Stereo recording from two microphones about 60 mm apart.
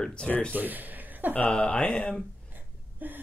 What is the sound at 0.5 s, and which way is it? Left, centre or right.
Speech, right.